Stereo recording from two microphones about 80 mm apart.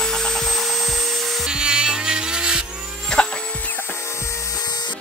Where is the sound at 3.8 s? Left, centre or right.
Left.